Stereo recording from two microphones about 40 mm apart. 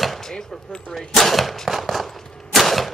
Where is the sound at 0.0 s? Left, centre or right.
Centre.